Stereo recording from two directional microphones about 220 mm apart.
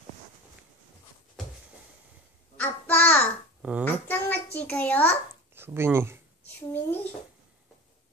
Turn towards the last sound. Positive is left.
turn(degrees=10)  # may be behind; listen again after turning